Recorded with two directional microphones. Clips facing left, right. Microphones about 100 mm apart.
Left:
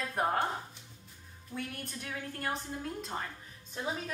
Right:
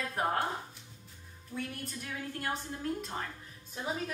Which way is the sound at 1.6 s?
Centre (ahead or behind).